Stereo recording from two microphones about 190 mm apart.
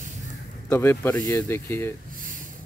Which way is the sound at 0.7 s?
10° left (ahead or behind).